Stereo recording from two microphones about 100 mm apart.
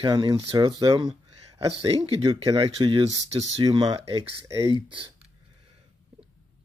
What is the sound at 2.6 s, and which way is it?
Speech, 55° right (ahead or behind).